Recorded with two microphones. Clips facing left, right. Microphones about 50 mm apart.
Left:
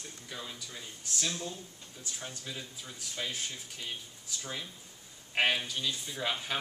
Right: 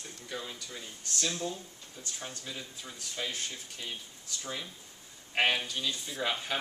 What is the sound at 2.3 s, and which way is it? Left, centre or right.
Speech, centre.